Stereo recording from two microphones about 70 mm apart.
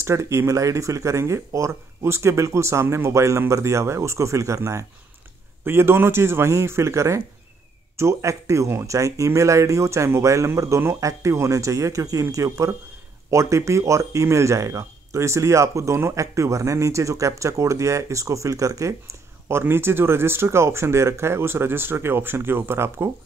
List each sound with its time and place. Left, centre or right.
0.0 s speech: right
5.6 s speech: right
19.6 s speech: right